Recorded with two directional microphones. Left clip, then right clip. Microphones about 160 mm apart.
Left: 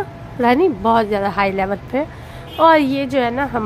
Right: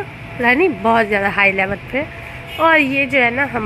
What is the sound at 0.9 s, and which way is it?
Speech, 5° left (ahead or behind).